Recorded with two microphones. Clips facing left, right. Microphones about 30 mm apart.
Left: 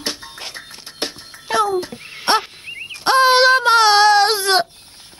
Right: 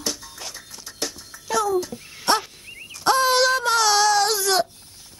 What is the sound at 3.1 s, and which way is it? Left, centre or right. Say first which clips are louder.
Baby cry: left 6 dB; left.